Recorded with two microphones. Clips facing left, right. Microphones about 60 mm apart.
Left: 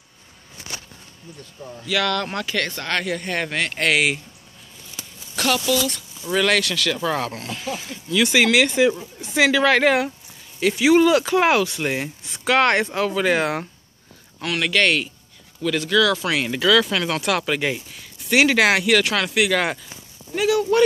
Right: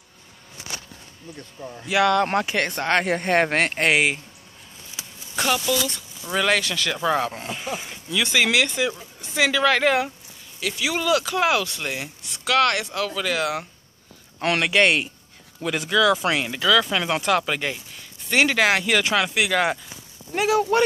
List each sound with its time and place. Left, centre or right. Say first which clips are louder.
1.8 s speech: right 4 dB; centre; by 3.7 s right
3.7 s speech: left 4 dB; right
5.3 s speech: left 2 dB; centre
8.5 s a woman's voice: left 5 dB; centre
10.6 s a woman's voice: left 10 dB; left
14.4 s speech: right 2 dB; right
14.7 s speech: left 2 dB; right
16.3 s speech: left 2 dB; centre
18.9 s speech: left 1 dB; centre
20.3 s speech: left 1 dB; right